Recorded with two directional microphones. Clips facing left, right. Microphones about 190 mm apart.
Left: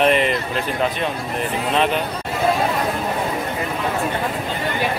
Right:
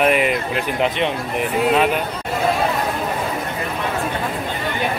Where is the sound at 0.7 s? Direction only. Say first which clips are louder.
Right 3 dB; 20° right (ahead or behind).